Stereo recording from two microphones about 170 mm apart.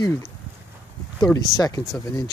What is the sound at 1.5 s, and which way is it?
Speech, 20° left (ahead or behind).